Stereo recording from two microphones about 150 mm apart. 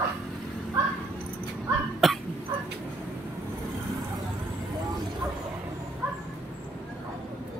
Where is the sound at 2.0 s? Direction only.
Centre (ahead or behind).